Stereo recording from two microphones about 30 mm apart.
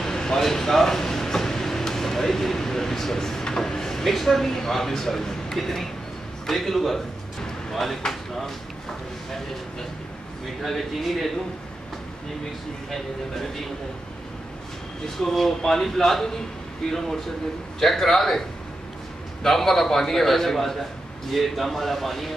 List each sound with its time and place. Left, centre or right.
0.0 s a sound: centre
4.1 s a man's voice: centre
10.6 s speech: centre
15.1 s a man's voice: centre
19.4 s a man's voice: centre